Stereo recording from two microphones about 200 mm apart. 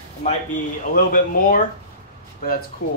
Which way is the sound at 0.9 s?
45° left (ahead or behind).